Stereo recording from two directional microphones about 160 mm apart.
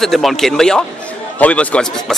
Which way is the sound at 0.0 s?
Centre (ahead or behind).